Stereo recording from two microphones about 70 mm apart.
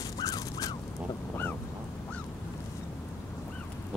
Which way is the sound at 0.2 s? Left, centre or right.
Left.